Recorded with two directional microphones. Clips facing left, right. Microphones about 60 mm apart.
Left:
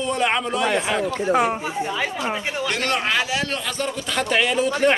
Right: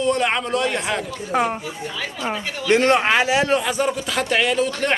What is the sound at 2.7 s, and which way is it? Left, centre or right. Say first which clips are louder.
A man's voice: right 9 dB; right.